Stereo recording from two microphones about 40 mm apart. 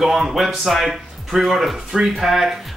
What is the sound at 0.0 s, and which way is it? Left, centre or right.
A man's voice, centre.